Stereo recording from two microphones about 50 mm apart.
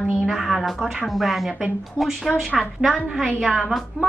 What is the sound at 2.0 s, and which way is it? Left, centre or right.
Speech, right.